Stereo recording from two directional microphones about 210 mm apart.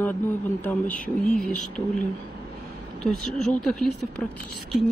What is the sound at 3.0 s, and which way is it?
Speech, centre (ahead or behind).